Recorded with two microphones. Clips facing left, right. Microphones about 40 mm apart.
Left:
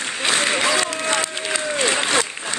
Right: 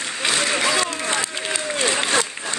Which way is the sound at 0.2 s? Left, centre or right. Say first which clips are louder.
Left 1 dB; left.